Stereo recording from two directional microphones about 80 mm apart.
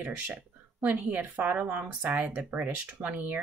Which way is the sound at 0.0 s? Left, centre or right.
Right.